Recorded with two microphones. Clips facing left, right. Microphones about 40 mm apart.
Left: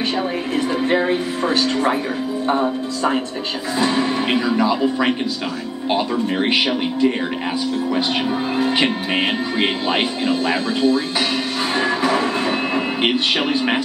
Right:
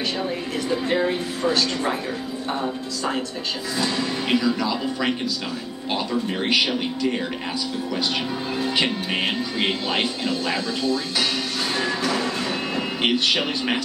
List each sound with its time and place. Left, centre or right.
0.6 s speech: left
8.5 s speech: left
11.7 s music: left